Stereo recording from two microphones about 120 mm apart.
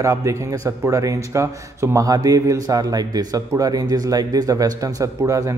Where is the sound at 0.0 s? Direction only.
25° right (ahead or behind).